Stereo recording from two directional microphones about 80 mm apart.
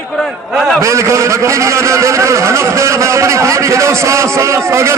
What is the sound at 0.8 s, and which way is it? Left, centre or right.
A man's voice, right.